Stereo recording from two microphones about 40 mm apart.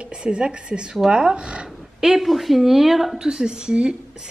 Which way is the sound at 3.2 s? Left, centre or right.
Centre.